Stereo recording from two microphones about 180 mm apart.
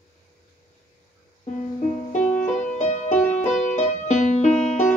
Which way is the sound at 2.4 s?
45° left (ahead or behind).